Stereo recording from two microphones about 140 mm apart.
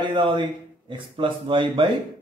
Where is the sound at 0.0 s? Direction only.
35° right (ahead or behind).